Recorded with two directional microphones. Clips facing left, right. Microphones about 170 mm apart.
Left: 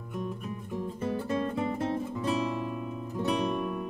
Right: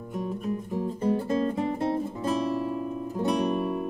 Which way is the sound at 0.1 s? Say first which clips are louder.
Right 5 dB; 40° right (ahead or behind).